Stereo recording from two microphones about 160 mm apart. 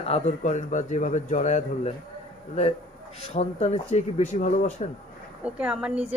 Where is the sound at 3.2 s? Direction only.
40° left (ahead or behind).